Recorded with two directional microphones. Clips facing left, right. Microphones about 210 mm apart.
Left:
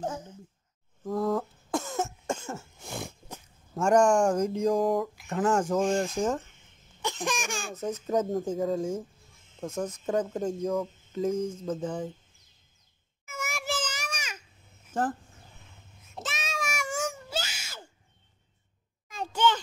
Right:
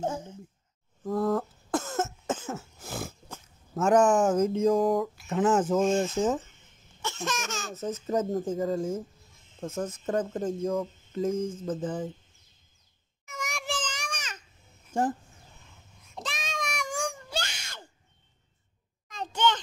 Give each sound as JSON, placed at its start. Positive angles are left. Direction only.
{"t": 0.0, "sound": "speech", "side_deg": -25}
{"t": 1.0, "sound": "cough", "side_deg": 0}
{"t": 3.7, "sound": "speech", "side_deg": -5}
{"t": 7.0, "sound": "speech", "side_deg": 15}
{"t": 8.1, "sound": "speech", "side_deg": 0}
{"t": 13.2, "sound": "a sound", "side_deg": 5}
{"t": 14.9, "sound": "speech", "side_deg": -10}
{"t": 16.2, "sound": "a sound", "side_deg": 5}
{"t": 19.0, "sound": "a sound", "side_deg": 5}